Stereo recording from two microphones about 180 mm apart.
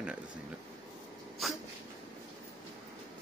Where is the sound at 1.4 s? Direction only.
Centre (ahead or behind).